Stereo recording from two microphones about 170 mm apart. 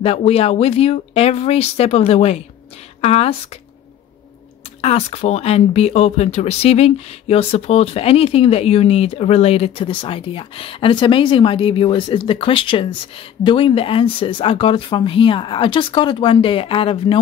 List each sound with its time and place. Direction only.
0.0 s speech: 35° left (ahead or behind)
4.8 s speech: 35° left (ahead or behind)